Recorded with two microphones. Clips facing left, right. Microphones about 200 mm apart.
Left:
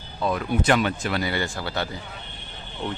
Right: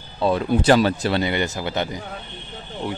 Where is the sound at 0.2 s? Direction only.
30° right (ahead or behind).